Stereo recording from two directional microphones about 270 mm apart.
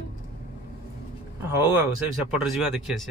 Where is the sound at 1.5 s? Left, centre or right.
Centre.